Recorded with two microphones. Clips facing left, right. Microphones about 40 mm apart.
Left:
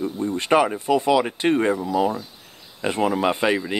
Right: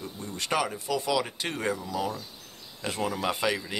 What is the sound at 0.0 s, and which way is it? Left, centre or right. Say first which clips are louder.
Speech: left 11 dB; left.